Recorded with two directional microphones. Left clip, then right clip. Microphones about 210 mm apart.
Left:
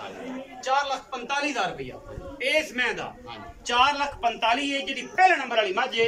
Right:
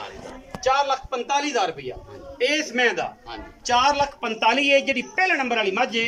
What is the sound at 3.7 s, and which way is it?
A man's voice, 60° right (ahead or behind).